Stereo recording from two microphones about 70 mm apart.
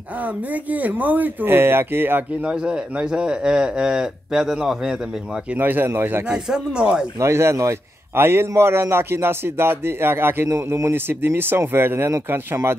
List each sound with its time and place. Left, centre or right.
0.7 s speech: right
2.4 s speech: centre
5.6 s speech: right
6.2 s speech: centre
7.2 s a man's voice: right